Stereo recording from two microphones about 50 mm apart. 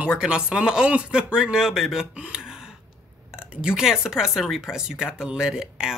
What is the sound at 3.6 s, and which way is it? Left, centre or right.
Speech, centre.